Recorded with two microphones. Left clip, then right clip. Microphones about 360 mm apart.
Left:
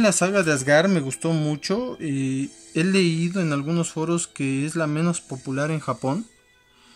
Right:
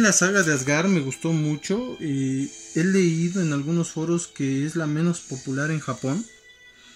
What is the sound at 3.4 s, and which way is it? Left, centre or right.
Speech, centre.